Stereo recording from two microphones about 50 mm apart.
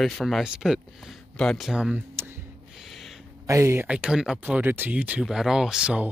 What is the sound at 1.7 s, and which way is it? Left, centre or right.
Speech, centre.